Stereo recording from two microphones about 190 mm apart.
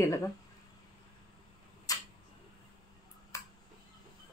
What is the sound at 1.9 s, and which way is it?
Tick-tock, 20° left (ahead or behind).